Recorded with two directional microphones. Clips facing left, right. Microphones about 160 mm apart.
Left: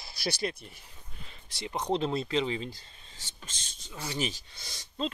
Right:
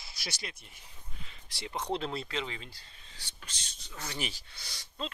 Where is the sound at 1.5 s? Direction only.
20° left (ahead or behind).